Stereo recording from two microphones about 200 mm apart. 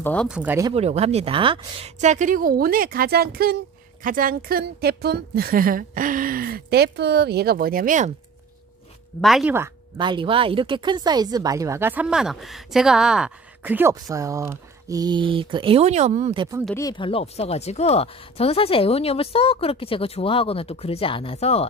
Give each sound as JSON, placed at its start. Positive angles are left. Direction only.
{"t": 0.0, "sound": "speech", "side_deg": 5}
{"t": 0.3, "sound": "speech", "side_deg": -5}
{"t": 0.7, "sound": "a woman's voice", "side_deg": -30}
{"t": 9.2, "sound": "speech", "side_deg": 0}
{"t": 9.9, "sound": "speech", "side_deg": -25}
{"t": 16.3, "sound": "speech", "side_deg": -20}
{"t": 16.7, "sound": "speech", "side_deg": 20}